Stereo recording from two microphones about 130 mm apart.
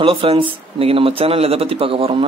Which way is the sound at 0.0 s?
45° right (ahead or behind).